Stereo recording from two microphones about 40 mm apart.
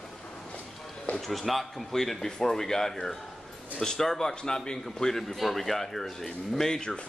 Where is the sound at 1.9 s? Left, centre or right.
Centre.